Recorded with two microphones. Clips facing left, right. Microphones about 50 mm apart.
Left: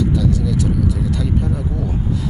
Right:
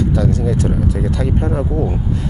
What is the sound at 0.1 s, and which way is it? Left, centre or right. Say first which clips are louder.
Speech: right 2 dB; right.